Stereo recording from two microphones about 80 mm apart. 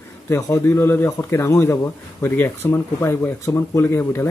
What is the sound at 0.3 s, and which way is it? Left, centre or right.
Speech, left.